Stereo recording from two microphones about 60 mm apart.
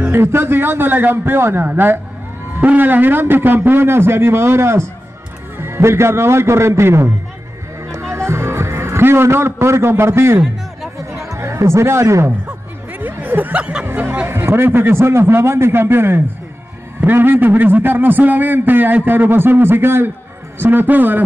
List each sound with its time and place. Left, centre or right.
0.1 s a man's voice: right
7.9 s music: right
11.0 s chatter: right
13.0 s a sound: right
13.8 s a man's voice: right